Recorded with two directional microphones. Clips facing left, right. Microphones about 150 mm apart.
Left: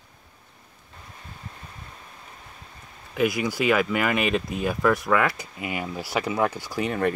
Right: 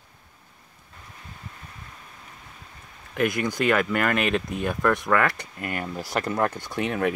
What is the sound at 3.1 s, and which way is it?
Speech, 5° left (ahead or behind).